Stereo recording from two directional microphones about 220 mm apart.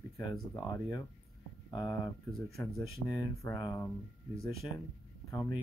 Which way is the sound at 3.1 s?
15° left (ahead or behind).